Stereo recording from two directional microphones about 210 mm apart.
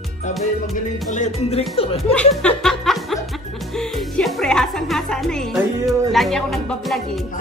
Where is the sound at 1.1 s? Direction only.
35° left (ahead or behind).